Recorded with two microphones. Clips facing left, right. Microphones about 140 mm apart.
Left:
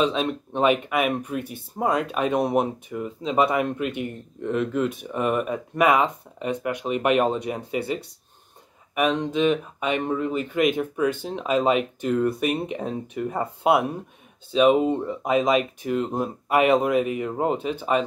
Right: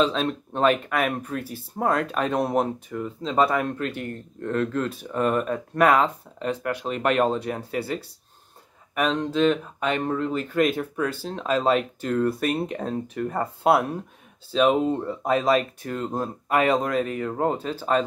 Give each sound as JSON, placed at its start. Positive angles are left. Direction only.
{"t": 0.0, "sound": "speech", "side_deg": 10}
{"t": 8.9, "sound": "speech", "side_deg": 10}
{"t": 16.6, "sound": "speech", "side_deg": 15}